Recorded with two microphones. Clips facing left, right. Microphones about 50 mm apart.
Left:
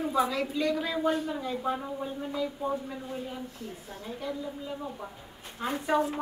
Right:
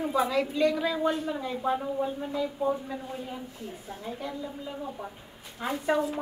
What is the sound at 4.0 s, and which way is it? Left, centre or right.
Speech, centre.